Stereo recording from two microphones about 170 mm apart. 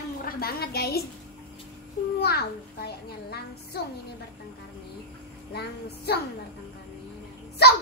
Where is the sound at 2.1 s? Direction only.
70° left (ahead or behind).